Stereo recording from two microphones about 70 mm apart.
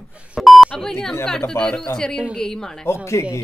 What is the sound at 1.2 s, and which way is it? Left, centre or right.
A woman's voice, centre.